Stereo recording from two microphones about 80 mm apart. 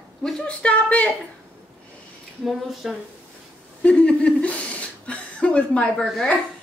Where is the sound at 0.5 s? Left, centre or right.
Centre.